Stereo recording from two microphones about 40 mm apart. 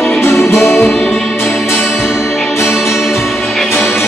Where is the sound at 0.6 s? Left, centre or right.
Centre.